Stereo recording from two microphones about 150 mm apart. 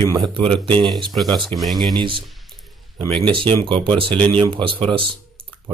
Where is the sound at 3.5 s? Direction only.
35° right (ahead or behind).